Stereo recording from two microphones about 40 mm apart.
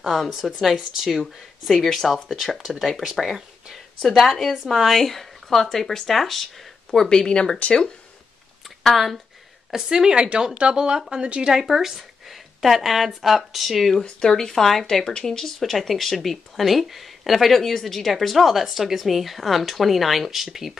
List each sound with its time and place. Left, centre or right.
0.3 s speech: centre
4.0 s speech: centre
7.1 s speech: centre
8.6 s a sound: centre
9.7 s speech: centre
11.6 s speech: centre
14.0 s speech: centre